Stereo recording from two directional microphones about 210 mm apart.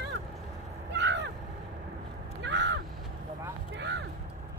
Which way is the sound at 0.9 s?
55° right (ahead or behind).